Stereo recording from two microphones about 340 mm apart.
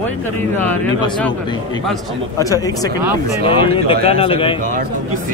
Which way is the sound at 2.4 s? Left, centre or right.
Centre.